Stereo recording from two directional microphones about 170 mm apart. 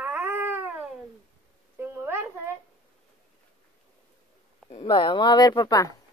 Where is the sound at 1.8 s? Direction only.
15° right (ahead or behind).